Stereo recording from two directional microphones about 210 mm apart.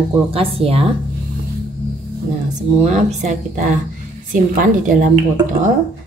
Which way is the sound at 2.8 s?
35° right (ahead or behind).